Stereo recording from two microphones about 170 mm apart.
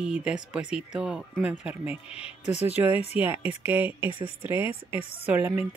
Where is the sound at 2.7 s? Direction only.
10° right (ahead or behind).